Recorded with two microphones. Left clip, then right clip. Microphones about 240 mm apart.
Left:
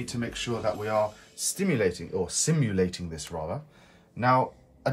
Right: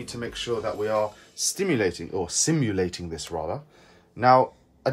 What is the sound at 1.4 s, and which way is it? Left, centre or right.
Speech, right.